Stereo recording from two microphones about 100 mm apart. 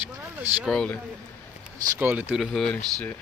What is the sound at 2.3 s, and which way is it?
Speech, 5° left (ahead or behind).